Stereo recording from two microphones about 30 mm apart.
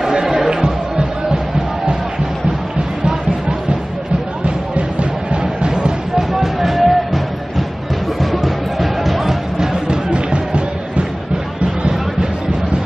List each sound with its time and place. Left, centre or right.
0.1 s music: right
5.4 s music: right
6.1 s music: centre
8.2 s music: centre
9.8 s music: right